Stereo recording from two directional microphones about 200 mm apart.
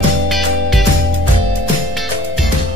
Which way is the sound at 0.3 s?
Centre (ahead or behind).